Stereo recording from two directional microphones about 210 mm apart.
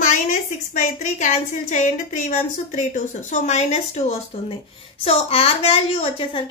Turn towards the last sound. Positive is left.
turn(degrees=25)  # may be behind; listen again after turning